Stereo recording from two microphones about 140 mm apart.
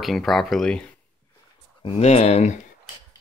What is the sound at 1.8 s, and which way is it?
Speech, 45° left (ahead or behind).